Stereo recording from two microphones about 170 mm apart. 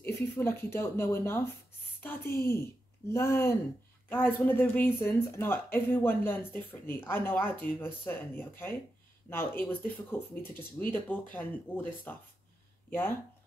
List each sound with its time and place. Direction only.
0.0 s speech: 15° left (ahead or behind)
2.0 s a sound: 10° left (ahead or behind)
2.3 s speech: 15° left (ahead or behind)